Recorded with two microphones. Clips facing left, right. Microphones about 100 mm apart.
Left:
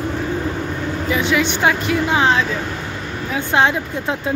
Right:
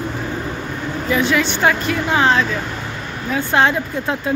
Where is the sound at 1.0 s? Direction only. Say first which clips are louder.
Right 1 dB; 15° left (ahead or behind).